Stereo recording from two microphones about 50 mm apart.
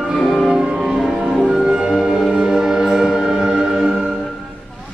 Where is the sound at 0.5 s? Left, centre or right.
Centre.